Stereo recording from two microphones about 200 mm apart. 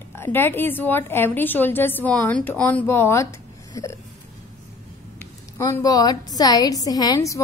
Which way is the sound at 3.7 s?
15° left (ahead or behind).